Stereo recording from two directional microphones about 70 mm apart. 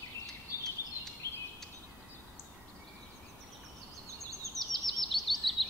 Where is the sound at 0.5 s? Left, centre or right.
Left.